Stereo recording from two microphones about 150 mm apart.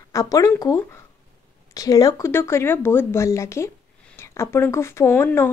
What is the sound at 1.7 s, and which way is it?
Speech, 25° left (ahead or behind).